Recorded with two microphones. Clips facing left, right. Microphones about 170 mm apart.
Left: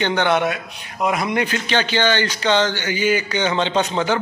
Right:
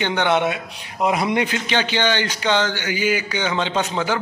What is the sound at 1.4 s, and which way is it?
A man's voice, 15° right (ahead or behind).